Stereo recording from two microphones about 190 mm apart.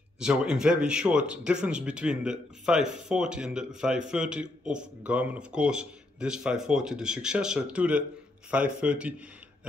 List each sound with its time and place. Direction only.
0.2 s speech: 5° right (ahead or behind)